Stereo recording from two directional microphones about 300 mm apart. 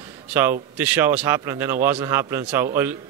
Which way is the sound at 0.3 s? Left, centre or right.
Centre.